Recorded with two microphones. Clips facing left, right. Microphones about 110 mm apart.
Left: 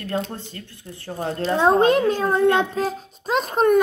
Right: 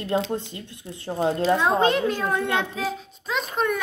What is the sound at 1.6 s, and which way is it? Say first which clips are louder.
A child's voice: left 4 dB; 45° left (ahead or behind).